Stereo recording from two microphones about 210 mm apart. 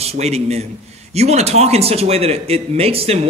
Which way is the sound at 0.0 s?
30° right (ahead or behind).